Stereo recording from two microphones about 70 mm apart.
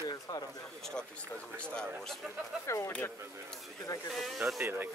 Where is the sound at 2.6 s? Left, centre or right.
Left.